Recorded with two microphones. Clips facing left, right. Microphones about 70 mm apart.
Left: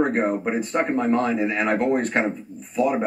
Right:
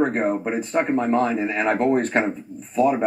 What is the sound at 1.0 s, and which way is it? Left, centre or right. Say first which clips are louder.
Speech: even; centre.